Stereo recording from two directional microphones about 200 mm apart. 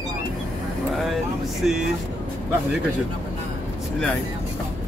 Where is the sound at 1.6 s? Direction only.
5° right (ahead or behind).